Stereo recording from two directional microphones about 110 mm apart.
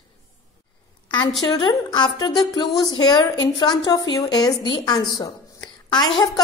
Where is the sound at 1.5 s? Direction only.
40° left (ahead or behind).